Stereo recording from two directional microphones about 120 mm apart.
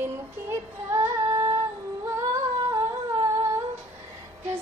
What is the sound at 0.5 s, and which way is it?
Child singing, 25° right (ahead or behind).